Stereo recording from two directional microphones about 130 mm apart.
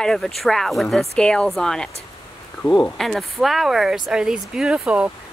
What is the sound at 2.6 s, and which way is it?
Speech, 20° left (ahead or behind).